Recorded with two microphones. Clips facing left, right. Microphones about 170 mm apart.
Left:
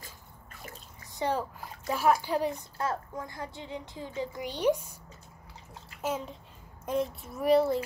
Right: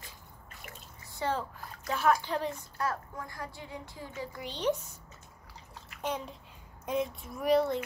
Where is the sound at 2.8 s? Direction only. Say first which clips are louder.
Left 2 dB; 25° left (ahead or behind).